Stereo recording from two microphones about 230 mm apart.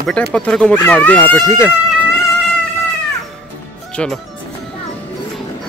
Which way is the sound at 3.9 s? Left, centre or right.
Centre.